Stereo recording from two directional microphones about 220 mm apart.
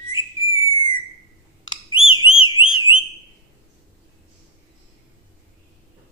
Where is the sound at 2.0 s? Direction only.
65° left (ahead or behind).